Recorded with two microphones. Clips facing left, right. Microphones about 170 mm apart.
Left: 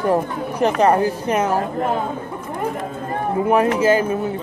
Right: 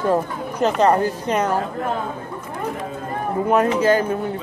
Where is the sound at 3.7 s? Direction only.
5° left (ahead or behind).